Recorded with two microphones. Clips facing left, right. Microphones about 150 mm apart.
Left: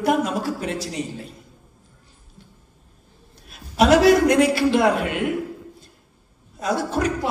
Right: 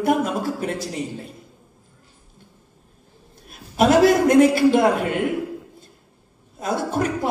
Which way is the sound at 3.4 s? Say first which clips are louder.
Left 1 dB; 50° right (ahead or behind).